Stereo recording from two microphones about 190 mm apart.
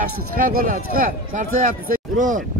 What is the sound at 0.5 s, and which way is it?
Speech, 50° right (ahead or behind).